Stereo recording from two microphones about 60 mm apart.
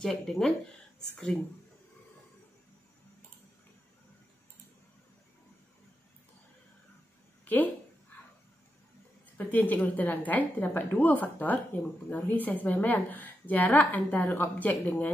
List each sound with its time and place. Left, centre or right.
0.0 s speech: centre
7.4 s speech: left
9.4 s a woman's voice: left